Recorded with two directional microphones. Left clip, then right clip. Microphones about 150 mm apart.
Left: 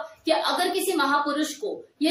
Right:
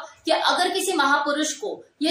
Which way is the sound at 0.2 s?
15° left (ahead or behind).